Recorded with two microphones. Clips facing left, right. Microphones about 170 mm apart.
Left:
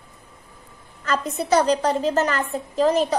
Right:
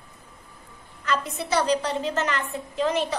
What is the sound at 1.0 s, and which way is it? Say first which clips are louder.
A child's voice: left 3 dB; 40° left (ahead or behind).